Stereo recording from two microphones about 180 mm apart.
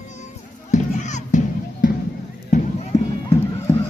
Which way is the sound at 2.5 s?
40° left (ahead or behind).